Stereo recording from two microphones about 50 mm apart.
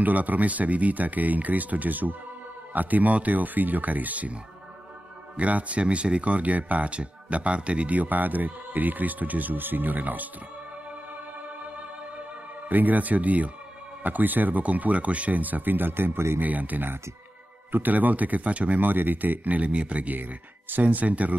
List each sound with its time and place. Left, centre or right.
0.0 s speech: right
5.4 s speech: right
12.6 s speech: right
16.3 s speech: right